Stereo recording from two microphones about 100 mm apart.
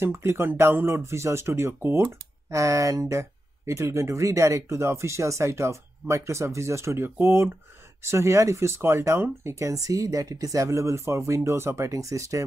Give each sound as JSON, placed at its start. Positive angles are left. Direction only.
{"t": 0.0, "sound": "speech", "side_deg": -25}